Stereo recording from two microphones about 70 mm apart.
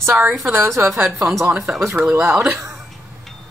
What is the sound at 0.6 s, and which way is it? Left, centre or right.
Speech, right.